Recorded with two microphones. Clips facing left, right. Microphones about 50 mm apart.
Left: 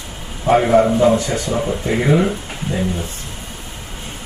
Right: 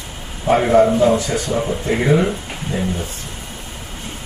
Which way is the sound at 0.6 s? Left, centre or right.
Centre.